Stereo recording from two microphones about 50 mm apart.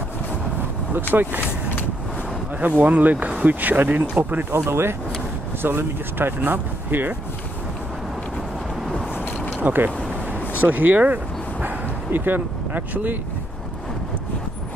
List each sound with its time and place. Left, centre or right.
1.1 s speech: right
2.8 s speech: right
4.2 s speech: right
4.5 s speech: right
5.6 s speech: right
9.6 s speech: right
11.6 s dog: right